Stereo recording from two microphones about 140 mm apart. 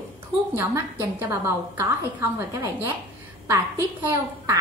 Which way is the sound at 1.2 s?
15° right (ahead or behind).